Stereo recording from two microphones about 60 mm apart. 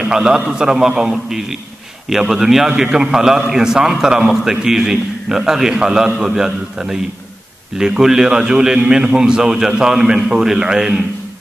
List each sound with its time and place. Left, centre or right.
0.0 s a man's voice: centre